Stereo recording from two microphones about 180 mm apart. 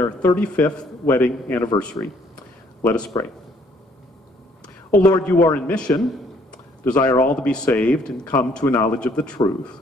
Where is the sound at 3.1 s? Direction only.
20° left (ahead or behind).